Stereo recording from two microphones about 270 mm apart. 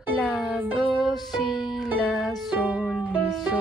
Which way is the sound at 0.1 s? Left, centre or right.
Centre.